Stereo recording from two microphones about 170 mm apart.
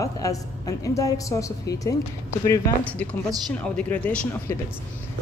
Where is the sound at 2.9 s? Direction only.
10° left (ahead or behind).